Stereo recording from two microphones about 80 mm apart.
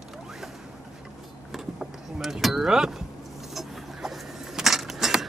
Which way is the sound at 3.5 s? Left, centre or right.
Centre.